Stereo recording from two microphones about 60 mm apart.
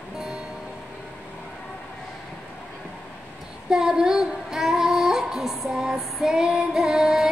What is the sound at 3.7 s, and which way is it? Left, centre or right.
Child singing, centre.